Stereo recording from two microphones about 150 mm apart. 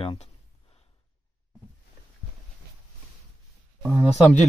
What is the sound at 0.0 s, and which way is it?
Speech, 40° left (ahead or behind).